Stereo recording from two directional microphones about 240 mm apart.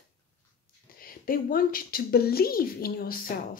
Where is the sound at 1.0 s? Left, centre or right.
Left.